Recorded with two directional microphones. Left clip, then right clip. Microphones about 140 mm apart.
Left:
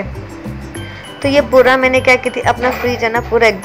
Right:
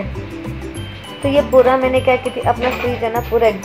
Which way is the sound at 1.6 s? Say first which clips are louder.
Left 3 dB; 15° left (ahead or behind).